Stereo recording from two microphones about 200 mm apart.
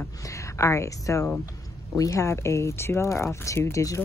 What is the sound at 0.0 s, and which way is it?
Speech, 15° left (ahead or behind).